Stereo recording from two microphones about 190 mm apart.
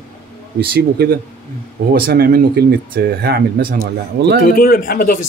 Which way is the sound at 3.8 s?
65° right (ahead or behind).